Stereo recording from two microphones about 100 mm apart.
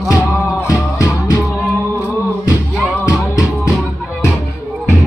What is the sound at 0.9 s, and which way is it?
Music, 35° left (ahead or behind).